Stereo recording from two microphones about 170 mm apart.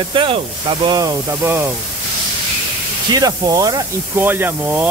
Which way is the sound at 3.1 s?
20° right (ahead or behind).